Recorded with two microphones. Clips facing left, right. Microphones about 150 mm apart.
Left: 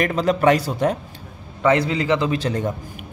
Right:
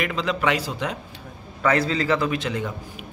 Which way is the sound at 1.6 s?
20° left (ahead or behind).